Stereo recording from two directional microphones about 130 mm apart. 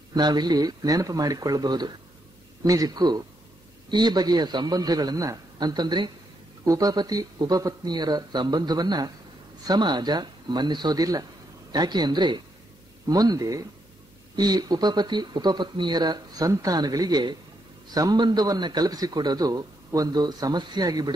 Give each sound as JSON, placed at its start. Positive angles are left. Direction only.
{"t": 0.1, "sound": "a man's voice", "side_deg": -30}